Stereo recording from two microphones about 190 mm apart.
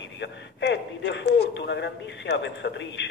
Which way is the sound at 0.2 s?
70° left (ahead or behind).